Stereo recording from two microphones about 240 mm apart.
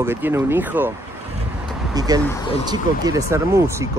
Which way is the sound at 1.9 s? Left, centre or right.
Centre.